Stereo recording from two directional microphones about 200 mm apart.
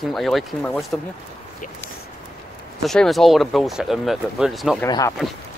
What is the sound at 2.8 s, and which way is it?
Speech, centre (ahead or behind).